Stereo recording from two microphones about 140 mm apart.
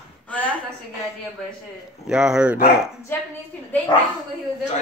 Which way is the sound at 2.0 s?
5° right (ahead or behind).